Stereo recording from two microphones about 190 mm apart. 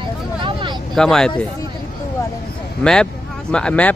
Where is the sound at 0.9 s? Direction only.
5° left (ahead or behind).